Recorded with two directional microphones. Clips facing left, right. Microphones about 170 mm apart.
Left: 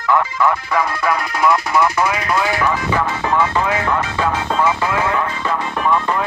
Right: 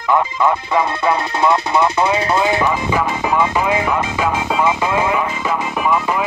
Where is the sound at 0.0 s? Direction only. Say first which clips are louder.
Right 1 dB; 20° right (ahead or behind).